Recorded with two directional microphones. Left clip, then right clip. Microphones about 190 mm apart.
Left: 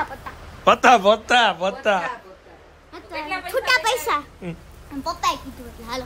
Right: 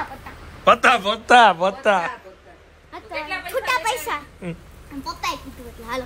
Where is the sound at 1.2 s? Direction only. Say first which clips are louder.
Right 5 dB; centre (ahead or behind).